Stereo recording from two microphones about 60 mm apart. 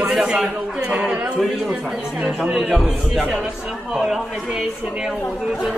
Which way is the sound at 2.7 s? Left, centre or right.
Centre.